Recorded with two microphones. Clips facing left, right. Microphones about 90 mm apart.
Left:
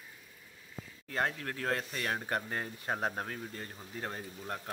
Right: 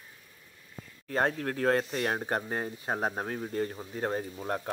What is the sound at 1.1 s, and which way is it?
Speech, 40° right (ahead or behind).